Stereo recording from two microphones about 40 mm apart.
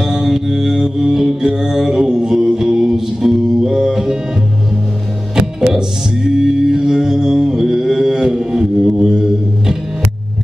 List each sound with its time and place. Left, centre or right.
0.0 s music: centre
5.8 s music: centre